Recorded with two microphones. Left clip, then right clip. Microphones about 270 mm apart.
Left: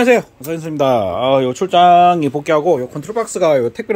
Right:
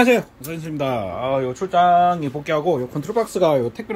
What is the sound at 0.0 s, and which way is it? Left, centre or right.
Speech, centre.